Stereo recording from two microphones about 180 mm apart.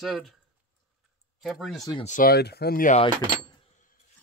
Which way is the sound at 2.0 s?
50° left (ahead or behind).